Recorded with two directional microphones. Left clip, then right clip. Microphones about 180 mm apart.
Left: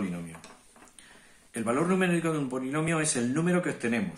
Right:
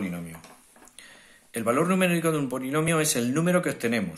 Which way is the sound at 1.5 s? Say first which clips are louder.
Right 4 dB; 35° right (ahead or behind).